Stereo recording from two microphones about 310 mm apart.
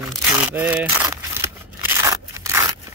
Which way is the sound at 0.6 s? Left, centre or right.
Centre.